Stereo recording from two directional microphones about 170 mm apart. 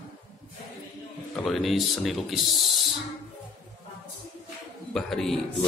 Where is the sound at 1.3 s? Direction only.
Centre (ahead or behind).